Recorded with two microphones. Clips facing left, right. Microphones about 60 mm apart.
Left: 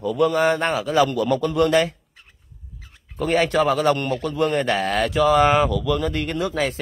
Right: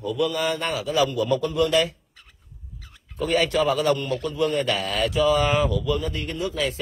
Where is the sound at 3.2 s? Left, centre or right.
Left.